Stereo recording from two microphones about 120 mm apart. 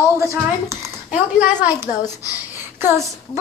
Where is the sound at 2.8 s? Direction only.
25° right (ahead or behind).